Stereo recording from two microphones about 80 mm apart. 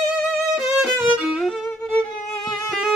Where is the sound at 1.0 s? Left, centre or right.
Centre.